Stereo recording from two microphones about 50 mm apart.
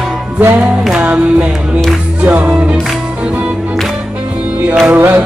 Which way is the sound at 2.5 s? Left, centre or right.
Right.